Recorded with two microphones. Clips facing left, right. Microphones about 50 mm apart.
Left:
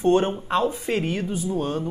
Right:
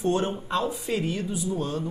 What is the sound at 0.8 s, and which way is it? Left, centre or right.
Speech, left.